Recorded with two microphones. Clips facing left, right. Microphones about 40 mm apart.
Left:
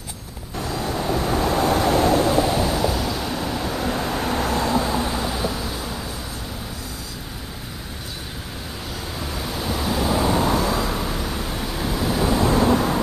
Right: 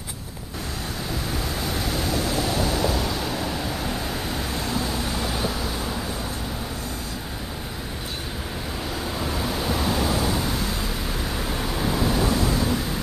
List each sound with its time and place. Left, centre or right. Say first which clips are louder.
0.8 s waves: left 9 dB; left
2.4 s vehicle: left 3 dB; centre
5.1 s a sound: left 2 dB; centre
9.2 s waves: right 1 dB; centre
10.5 s vehicle: left 6 dB; left
11.1 s vehicle: left 1 dB; centre
12.4 s vehicle: left 6 dB; left